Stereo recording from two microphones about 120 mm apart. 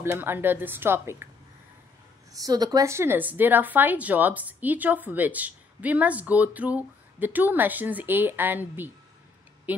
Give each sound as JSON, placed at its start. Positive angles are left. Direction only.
{"t": 0.0, "sound": "speech", "side_deg": -20}
{"t": 2.3, "sound": "speech", "side_deg": -35}